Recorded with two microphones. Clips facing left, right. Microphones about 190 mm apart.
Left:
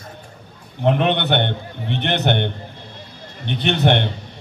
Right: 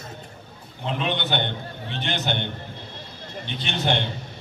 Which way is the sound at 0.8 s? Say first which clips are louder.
Left 9 dB; 60° left (ahead or behind).